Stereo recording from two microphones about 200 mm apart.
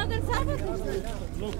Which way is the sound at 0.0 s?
35° left (ahead or behind).